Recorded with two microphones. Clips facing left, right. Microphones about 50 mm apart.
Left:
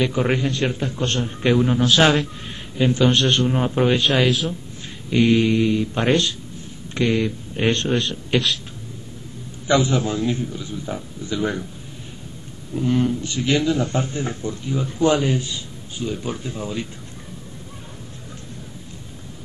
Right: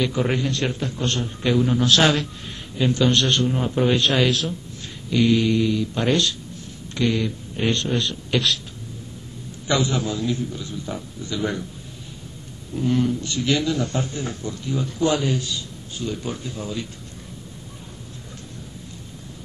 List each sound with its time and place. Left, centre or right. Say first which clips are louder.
0.0 s a man's voice: left 2 dB; left
1.0 s a man's voice: left 3 dB; left
1.8 s a man's voice: left 2 dB; centre
3.8 s speech: left 1 dB; centre
5.1 s a man's voice: left 2 dB; left
8.3 s speech: left 1 dB; left
9.7 s a man's voice: left 3 dB; left
10.6 s speech: left 2 dB; centre
12.7 s a man's voice: left 1 dB; centre
14.7 s speech: even; centre
15.0 s a man's voice: left 3 dB; left